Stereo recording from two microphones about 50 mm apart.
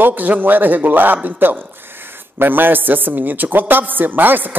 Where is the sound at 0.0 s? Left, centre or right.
Right.